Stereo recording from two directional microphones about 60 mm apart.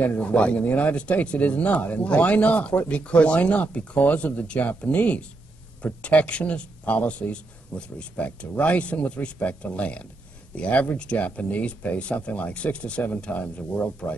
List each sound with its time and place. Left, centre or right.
0.0 s speech: left